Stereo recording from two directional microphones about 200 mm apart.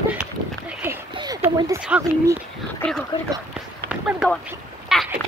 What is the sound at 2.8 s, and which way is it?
Speech, centre (ahead or behind).